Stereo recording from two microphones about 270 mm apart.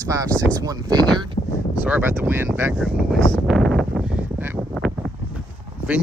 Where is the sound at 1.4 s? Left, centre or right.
Left.